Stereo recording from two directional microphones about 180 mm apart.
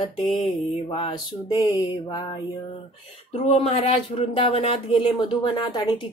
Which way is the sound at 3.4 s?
35° left (ahead or behind).